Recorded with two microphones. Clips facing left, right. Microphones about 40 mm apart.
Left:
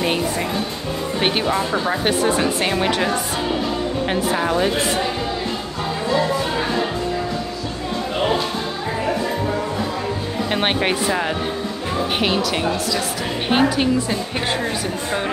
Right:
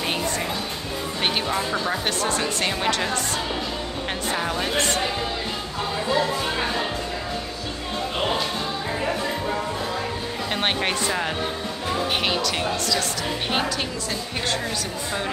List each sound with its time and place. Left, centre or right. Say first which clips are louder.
1.2 s speech: left 4 dB; centre
10.5 s speech: left 4 dB; centre
13.5 s speech: left 9 dB; centre